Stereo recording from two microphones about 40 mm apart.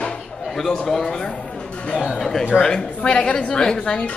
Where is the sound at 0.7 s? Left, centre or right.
Centre.